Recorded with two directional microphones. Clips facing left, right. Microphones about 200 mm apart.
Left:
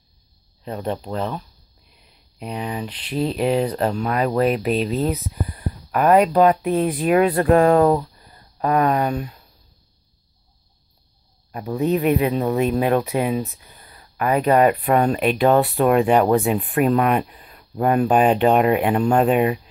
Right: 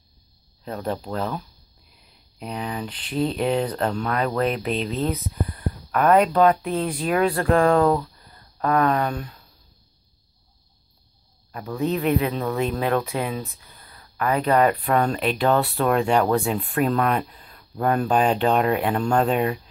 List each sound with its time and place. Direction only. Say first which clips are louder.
0.7 s speech: left 2 dB; 5° left (ahead or behind)
5.9 s a sound: left 2 dB; 15° left (ahead or behind)
6.2 s speech: left 2 dB; 15° left (ahead or behind)
11.5 s speech: left 4 dB; 20° left (ahead or behind)